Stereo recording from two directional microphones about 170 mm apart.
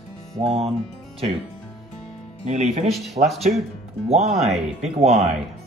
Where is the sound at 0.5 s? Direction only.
35° right (ahead or behind).